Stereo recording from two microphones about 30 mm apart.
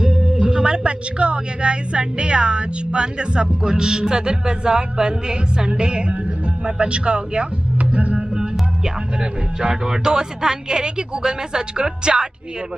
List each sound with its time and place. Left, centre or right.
0.0 s music: right
0.4 s a woman's voice: right
7.7 s music: right
8.8 s speech: right